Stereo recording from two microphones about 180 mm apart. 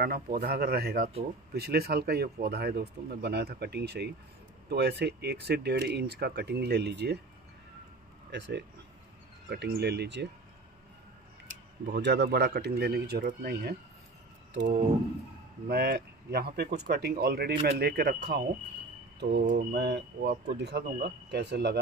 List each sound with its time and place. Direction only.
0.0 s speech: 55° right (ahead or behind)
8.3 s speech: 75° right (ahead or behind)
9.5 s speech: 65° right (ahead or behind)
11.9 s speech: 70° right (ahead or behind)
15.7 s speech: 60° right (ahead or behind)
19.1 s mantra: 70° right (ahead or behind)
19.4 s mantra: 45° right (ahead or behind)
19.7 s speech: 65° right (ahead or behind)